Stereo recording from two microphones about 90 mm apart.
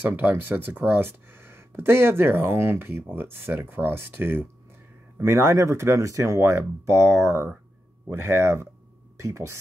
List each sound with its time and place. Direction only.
0.0 s speech: 20° right (ahead or behind)